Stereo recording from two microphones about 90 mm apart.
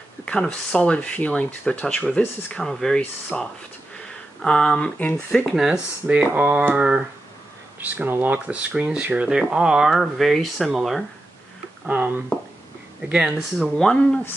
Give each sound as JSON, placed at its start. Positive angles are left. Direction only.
{"t": 0.2, "sound": "speech", "side_deg": 10}
{"t": 3.0, "sound": "speech", "side_deg": 15}
{"t": 4.4, "sound": "speech", "side_deg": 5}
{"t": 5.7, "sound": "speech", "side_deg": -15}
{"t": 13.1, "sound": "speech", "side_deg": -10}
{"t": 13.7, "sound": "speech", "side_deg": 10}